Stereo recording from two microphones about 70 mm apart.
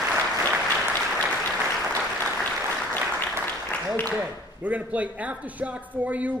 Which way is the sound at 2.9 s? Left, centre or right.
Left.